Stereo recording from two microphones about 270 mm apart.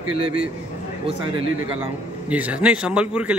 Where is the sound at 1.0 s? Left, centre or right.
Centre.